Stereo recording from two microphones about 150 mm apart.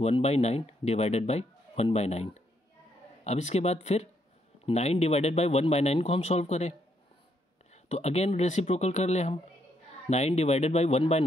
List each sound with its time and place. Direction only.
0.0 s a man's voice: 45° left (ahead or behind)
7.7 s a man's voice: 45° left (ahead or behind)